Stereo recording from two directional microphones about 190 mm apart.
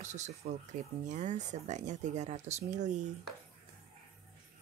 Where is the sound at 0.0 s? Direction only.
40° right (ahead or behind).